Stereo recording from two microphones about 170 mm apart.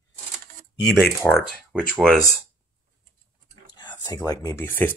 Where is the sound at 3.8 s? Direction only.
25° left (ahead or behind).